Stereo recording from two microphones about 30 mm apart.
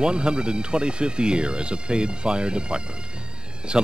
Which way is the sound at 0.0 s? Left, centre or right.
Right.